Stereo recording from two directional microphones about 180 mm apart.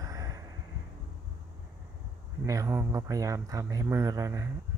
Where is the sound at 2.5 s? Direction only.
15° right (ahead or behind).